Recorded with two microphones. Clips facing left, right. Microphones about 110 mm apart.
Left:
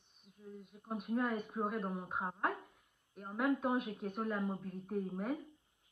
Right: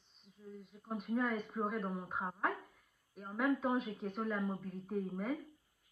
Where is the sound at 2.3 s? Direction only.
20° left (ahead or behind).